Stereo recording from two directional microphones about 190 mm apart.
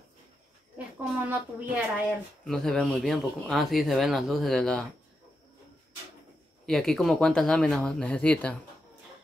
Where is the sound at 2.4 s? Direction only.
Centre (ahead or behind).